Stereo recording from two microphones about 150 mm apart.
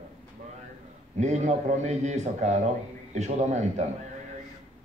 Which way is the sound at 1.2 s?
50° right (ahead or behind).